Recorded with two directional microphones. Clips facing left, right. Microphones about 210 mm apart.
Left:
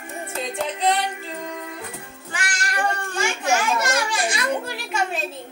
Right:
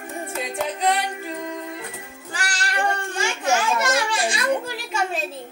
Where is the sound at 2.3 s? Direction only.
35° right (ahead or behind).